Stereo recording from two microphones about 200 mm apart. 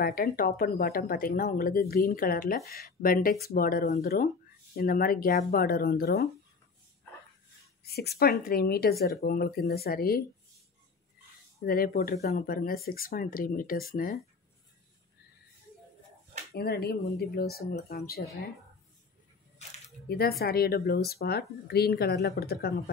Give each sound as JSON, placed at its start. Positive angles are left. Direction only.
{"t": 0.0, "sound": "speech", "side_deg": 45}
{"t": 7.8, "sound": "speech", "side_deg": 50}
{"t": 11.6, "sound": "speech", "side_deg": 45}
{"t": 16.5, "sound": "speech", "side_deg": 50}
{"t": 20.1, "sound": "speech", "side_deg": 50}